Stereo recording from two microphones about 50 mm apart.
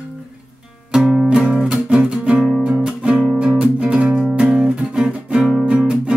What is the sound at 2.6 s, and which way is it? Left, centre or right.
Guitar, right.